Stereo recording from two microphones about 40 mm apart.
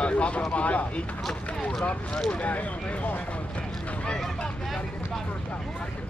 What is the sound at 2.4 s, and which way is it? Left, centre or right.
Speech, left.